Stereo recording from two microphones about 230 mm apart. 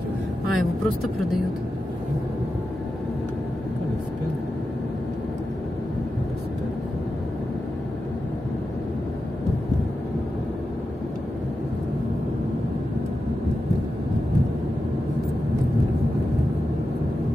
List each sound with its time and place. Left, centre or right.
0.6 s speech: centre